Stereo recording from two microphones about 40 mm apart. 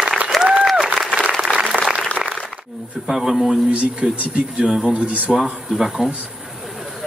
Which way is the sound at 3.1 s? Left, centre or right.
Centre.